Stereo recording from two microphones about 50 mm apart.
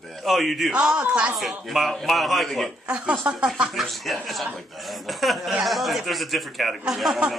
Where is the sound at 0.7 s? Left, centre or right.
Right.